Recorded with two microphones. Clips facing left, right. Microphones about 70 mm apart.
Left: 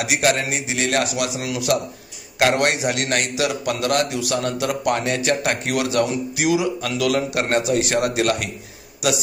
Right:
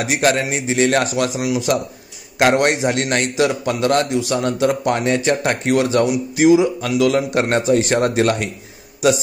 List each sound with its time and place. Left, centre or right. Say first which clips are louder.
0.0 s a man's voice: right 3 dB; right
1.4 s a man's voice: right 3 dB; right